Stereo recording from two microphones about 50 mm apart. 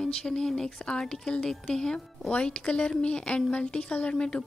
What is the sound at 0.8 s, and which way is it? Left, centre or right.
Speech, centre.